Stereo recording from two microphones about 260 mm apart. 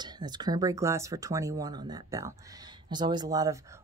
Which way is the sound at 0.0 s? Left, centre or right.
Centre.